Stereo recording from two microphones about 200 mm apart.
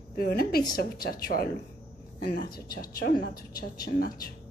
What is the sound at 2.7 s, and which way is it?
A woman's voice, 50° left (ahead or behind).